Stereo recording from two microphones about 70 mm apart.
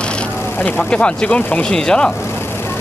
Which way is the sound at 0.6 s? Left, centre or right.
Centre.